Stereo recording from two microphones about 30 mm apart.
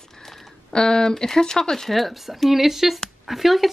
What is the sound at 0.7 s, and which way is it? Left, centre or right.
Speech, left.